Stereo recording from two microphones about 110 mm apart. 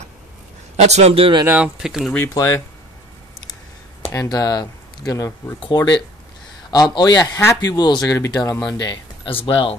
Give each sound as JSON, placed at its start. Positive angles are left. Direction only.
{"t": 0.7, "sound": "a man's voice", "side_deg": -80}
{"t": 1.4, "sound": "speech", "side_deg": -15}
{"t": 1.8, "sound": "speech", "side_deg": 0}
{"t": 2.3, "sound": "speech", "side_deg": 25}
{"t": 4.1, "sound": "speech", "side_deg": 35}
{"t": 9.3, "sound": "speech", "side_deg": 55}